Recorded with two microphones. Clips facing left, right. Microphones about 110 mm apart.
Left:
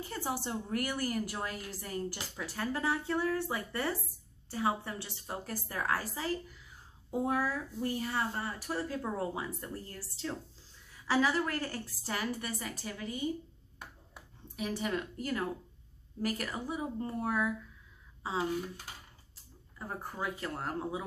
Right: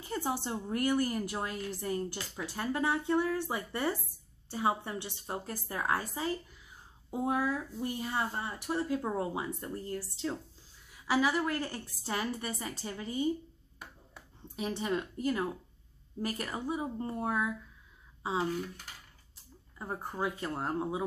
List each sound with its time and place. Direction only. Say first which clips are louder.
0.0 s speech: right 2 dB; 20° right (ahead or behind)
14.5 s speech: right 1 dB; 25° right (ahead or behind)
19.8 s speech: right 3 dB; 20° right (ahead or behind)